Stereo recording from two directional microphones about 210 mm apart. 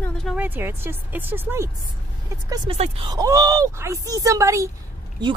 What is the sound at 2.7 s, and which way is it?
Speech, 30° right (ahead or behind).